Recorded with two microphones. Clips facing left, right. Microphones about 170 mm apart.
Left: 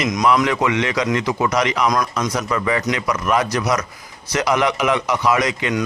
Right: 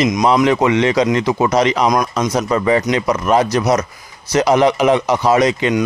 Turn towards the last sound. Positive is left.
turn(degrees=-30)  # may be behind; listen again after turning